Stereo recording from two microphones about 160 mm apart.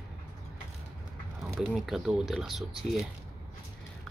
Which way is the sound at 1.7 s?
Centre (ahead or behind).